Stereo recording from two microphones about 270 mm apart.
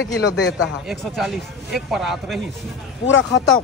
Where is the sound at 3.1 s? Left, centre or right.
Left.